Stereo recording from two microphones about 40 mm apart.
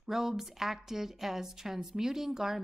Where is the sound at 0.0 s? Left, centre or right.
Centre.